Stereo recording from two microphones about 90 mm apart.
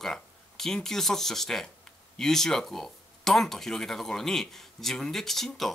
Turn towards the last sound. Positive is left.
turn(degrees=5)  # may be behind; listen again after turning